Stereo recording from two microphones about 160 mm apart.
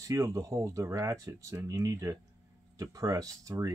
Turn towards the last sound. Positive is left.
turn(degrees=-20)  # may be behind; listen again after turning